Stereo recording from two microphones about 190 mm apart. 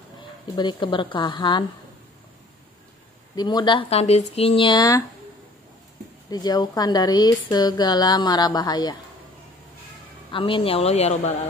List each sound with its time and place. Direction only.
0.6 s a woman's voice: 25° left (ahead or behind)
3.3 s a woman's voice: 20° left (ahead or behind)
6.3 s a woman's voice: 20° left (ahead or behind)
10.3 s speech: 30° left (ahead or behind)